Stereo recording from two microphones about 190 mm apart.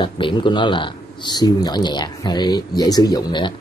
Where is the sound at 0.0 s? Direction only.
25° left (ahead or behind).